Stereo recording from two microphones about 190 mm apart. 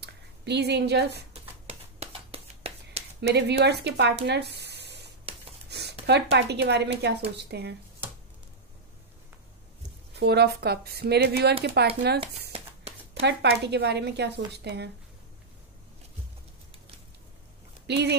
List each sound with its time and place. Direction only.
0.0 s speech: 60° right (ahead or behind)
1.3 s a sound: 30° right (ahead or behind)
3.2 s speech: 60° right (ahead or behind)
5.7 s a sound: 60° right (ahead or behind)
6.3 s a woman's voice: 60° right (ahead or behind)
10.1 s a woman's voice: 60° right (ahead or behind)
12.2 s a sound: 30° right (ahead or behind)
13.1 s a woman's voice: 65° right (ahead or behind)
17.8 s speech: 65° right (ahead or behind)